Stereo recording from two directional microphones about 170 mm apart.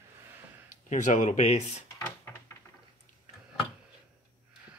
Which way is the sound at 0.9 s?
45° left (ahead or behind).